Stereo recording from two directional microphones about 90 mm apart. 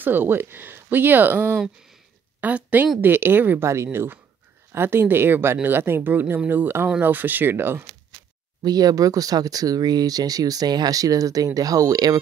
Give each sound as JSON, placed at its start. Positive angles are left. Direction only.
{"t": 0.0, "sound": "speech", "side_deg": -20}
{"t": 8.6, "sound": "speech", "side_deg": -45}